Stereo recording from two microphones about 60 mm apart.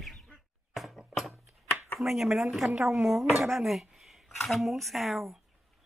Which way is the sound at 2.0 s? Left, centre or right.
Centre.